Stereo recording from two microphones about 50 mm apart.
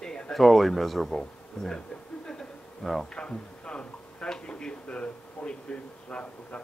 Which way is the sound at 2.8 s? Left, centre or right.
Centre.